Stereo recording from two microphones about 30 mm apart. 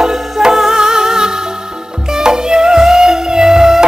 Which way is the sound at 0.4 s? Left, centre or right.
Centre.